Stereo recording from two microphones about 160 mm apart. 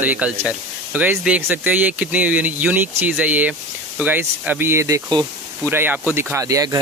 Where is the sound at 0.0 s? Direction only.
10° right (ahead or behind).